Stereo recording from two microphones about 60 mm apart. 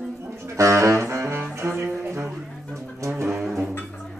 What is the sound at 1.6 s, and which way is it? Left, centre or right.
Music, right.